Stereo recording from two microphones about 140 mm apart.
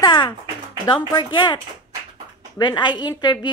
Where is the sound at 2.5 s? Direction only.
30° left (ahead or behind).